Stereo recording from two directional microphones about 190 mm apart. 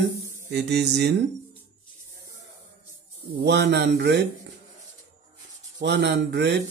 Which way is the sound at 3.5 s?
65° right (ahead or behind).